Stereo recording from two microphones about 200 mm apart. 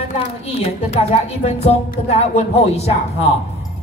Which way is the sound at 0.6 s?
30° left (ahead or behind).